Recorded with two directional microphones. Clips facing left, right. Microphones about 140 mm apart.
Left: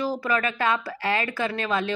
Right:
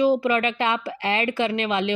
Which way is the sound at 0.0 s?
20° right (ahead or behind).